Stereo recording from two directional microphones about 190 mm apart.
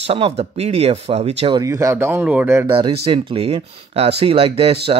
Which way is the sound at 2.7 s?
30° right (ahead or behind).